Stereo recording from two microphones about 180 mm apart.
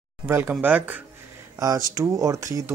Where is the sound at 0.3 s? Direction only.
10° right (ahead or behind).